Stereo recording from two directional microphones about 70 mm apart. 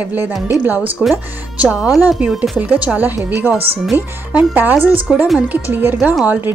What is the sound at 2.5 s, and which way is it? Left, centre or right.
Speech, centre.